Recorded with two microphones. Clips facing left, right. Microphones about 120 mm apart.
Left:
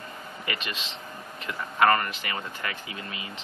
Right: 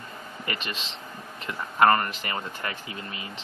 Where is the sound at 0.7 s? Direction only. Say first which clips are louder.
Right 1 dB; 35° right (ahead or behind).